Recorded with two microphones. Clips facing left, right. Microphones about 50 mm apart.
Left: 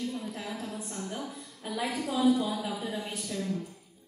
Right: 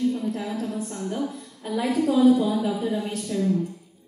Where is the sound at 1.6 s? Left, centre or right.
Centre.